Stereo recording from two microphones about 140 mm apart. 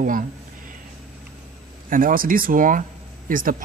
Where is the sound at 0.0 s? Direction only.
75° right (ahead or behind).